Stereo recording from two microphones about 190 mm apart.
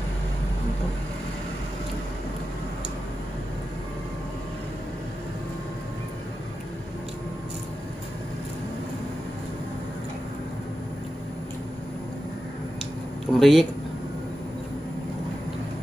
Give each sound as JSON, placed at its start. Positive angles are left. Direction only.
{"t": 13.3, "sound": "speech", "side_deg": 0}